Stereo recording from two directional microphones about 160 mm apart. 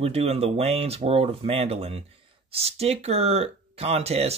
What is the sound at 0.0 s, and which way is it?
Speech, 40° right (ahead or behind).